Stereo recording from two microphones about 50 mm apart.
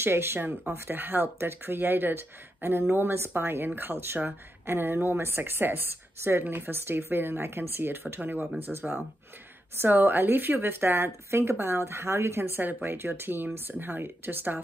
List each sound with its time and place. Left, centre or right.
0.0 s speech: right
6.4 s speech: right